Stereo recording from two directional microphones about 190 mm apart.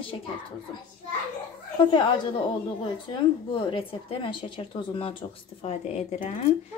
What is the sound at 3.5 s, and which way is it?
A woman's voice, 25° left (ahead or behind).